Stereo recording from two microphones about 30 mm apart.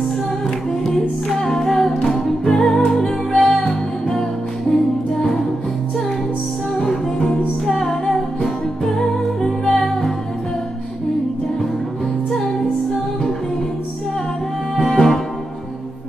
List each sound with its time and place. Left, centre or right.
0.8 s music: centre
6.8 s music: centre
14.9 s music: centre